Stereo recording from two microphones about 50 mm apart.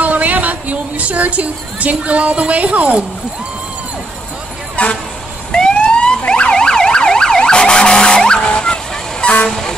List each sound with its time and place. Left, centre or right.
0.0 s a woman's voice: right
4.8 s speech: left
5.5 s emergency vehicle: centre
9.5 s vehicle: centre